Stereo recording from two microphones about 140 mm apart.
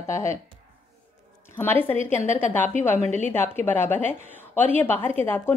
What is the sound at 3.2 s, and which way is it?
A woman's voice, 15° left (ahead or behind).